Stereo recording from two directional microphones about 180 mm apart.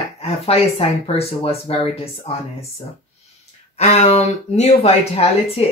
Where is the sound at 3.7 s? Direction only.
35° left (ahead or behind).